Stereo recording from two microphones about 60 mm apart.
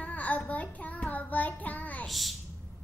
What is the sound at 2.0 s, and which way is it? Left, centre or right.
Speech, centre.